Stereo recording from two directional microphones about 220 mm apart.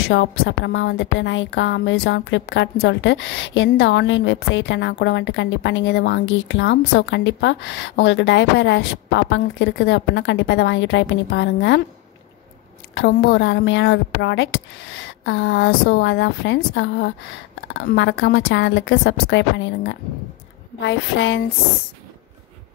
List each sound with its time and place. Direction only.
0.1 s a woman's voice: 55° left (ahead or behind)
12.9 s a woman's voice: 55° left (ahead or behind)